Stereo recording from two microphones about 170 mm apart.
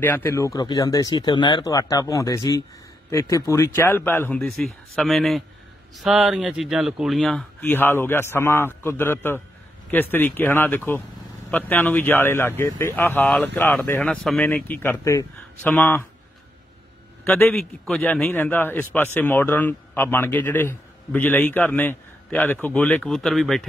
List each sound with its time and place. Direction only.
0.0 s speech: 15° left (ahead or behind)
17.3 s speech: 10° left (ahead or behind)